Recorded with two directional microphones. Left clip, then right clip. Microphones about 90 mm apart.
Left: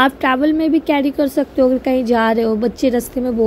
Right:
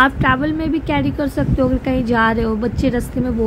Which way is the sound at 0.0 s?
35° left (ahead or behind).